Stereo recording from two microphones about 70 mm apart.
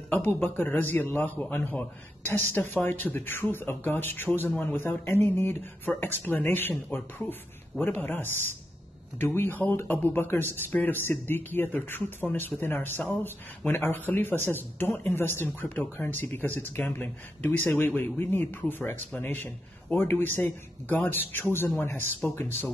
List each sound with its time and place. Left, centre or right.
0.1 s speech: left